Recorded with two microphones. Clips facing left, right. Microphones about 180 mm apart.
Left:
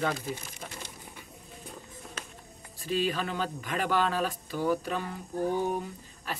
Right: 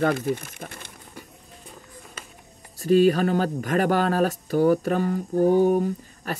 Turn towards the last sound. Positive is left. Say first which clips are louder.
# right 9 dB
turn(degrees=-45)  # may be behind; listen again after turning